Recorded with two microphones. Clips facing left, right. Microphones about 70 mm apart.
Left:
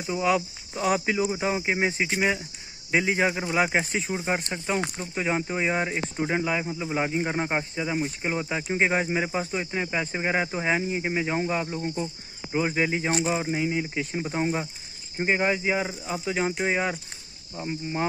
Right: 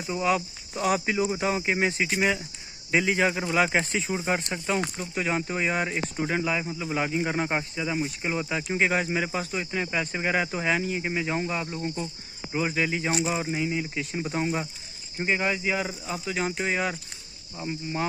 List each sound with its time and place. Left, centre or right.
0.1 s speech: left
1.4 s speech: left
7.7 s speech: left
11.7 s speech: centre
12.5 s speech: left
15.1 s speech: left